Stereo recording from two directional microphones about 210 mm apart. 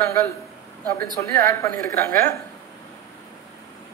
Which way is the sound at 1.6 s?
15° left (ahead or behind).